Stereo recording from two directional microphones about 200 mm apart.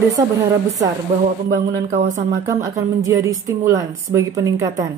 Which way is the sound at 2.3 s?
15° right (ahead or behind).